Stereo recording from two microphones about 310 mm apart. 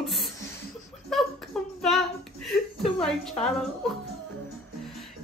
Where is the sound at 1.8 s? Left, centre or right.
Centre.